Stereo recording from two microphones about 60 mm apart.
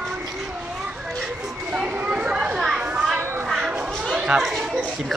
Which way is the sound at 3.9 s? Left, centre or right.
Centre.